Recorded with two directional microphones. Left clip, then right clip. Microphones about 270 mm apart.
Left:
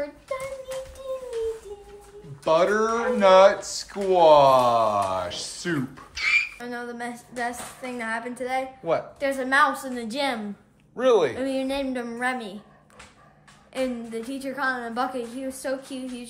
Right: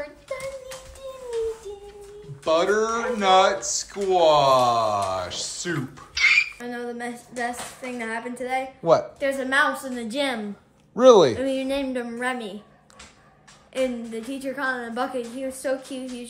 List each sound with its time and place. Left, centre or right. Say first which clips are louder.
2.4 s speech: even; centre
11.0 s speech: right 6 dB; right
11.3 s speech: right 2 dB; centre
13.7 s speech: right 2 dB; centre